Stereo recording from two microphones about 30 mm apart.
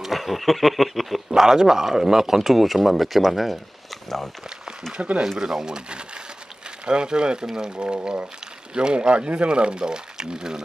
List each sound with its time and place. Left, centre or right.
0.0 s speech: centre
1.3 s speech: centre
5.0 s speech: right